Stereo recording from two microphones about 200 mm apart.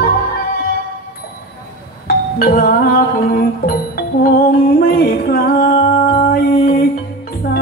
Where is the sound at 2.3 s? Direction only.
50° left (ahead or behind).